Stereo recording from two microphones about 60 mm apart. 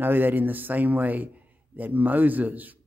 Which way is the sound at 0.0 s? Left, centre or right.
Right.